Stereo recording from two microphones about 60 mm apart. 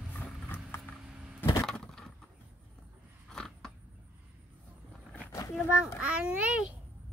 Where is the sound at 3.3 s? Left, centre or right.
Centre.